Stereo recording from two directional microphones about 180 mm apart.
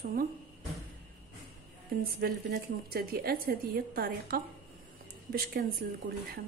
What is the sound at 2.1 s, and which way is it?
A woman's voice, 55° right (ahead or behind).